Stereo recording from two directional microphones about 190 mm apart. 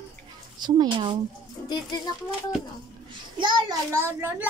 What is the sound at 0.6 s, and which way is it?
Speech, 25° right (ahead or behind).